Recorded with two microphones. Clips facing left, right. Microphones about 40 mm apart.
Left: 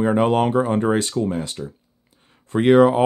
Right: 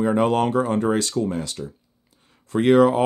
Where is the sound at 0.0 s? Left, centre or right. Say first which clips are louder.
Left 2 dB; left.